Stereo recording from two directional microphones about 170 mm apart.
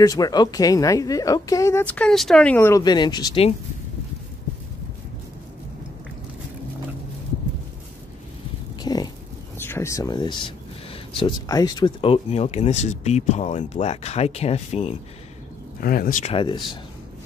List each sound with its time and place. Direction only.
0.0 s speech: 20° left (ahead or behind)
2.8 s speech: 25° left (ahead or behind)
8.8 s livestock: 25° left (ahead or behind)
9.6 s speech: 15° left (ahead or behind); by 15.0 s 35° left (ahead or behind)
15.8 s speech: 55° left (ahead or behind)
16.3 s speech: 30° left (ahead or behind)